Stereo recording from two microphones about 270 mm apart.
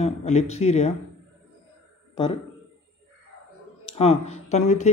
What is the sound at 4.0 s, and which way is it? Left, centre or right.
Speech, left.